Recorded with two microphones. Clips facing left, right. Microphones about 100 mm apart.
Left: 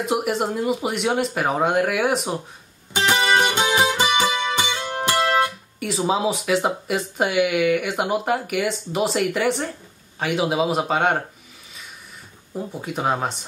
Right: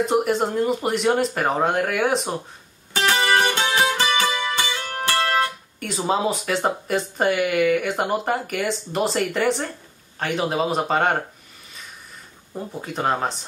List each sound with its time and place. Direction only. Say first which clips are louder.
0.0 s speech: right 2 dB; 5° left (ahead or behind)
2.9 s music: left 1 dB; 20° left (ahead or behind)
5.8 s speech: left 1 dB; centre (ahead or behind)
12.5 s speech: left 1 dB; 5° left (ahead or behind)